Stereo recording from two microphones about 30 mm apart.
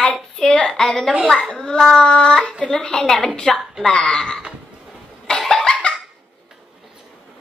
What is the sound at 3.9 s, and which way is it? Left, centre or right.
Speech, left.